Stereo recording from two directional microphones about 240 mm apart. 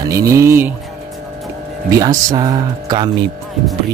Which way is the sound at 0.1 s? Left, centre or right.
Centre.